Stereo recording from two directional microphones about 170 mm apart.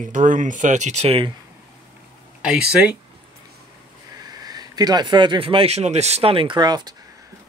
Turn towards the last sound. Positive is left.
turn(degrees=-25)  # may be behind; listen again after turning